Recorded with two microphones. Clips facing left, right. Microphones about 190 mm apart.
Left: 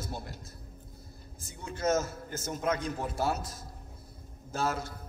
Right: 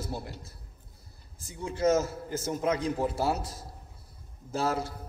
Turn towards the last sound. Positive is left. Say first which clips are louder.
# right 3 dB
turn(degrees=-30)  # may be behind; listen again after turning